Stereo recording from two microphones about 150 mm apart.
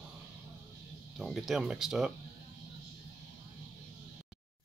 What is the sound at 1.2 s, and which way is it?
Speech, centre (ahead or behind).